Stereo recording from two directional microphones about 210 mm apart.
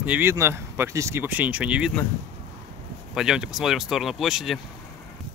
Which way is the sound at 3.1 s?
5° right (ahead or behind).